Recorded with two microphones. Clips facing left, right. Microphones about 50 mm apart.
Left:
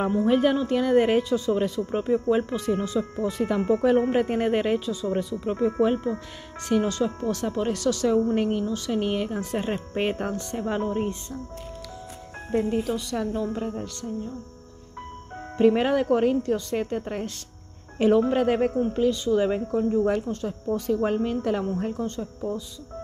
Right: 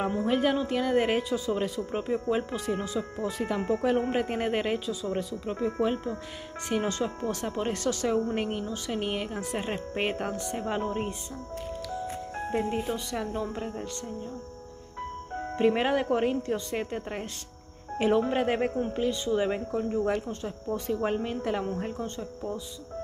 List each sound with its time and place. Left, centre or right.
0.2 s speech: centre
5.0 s speech: centre
6.7 s speech: centre
8.1 s speech: centre
8.9 s speech: centre
12.4 s speech: centre
15.3 s speech: centre